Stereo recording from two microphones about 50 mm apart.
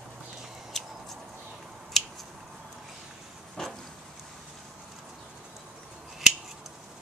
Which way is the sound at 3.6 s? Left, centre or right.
Centre.